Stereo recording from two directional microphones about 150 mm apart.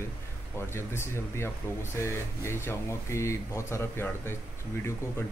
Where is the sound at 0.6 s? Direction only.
15° left (ahead or behind).